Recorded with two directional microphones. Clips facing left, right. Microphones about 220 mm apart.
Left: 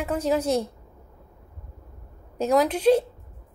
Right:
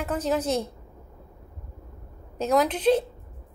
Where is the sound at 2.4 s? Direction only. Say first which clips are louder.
Left 2 dB; centre (ahead or behind).